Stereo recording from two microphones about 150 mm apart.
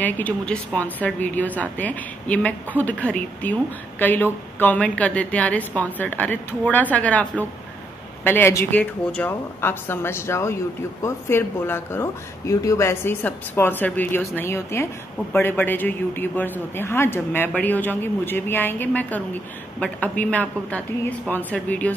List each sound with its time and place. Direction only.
0.0 s a woman's voice: 10° left (ahead or behind)